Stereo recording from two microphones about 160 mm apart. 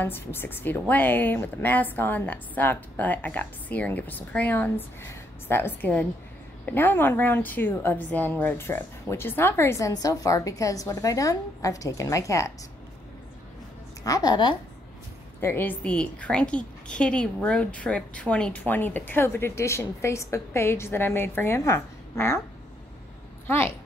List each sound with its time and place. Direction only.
0.0 s a woman's voice: 15° left (ahead or behind)
14.0 s a woman's voice: 25° left (ahead or behind)
15.4 s a woman's voice: 10° left (ahead or behind)
23.4 s speech: 15° left (ahead or behind)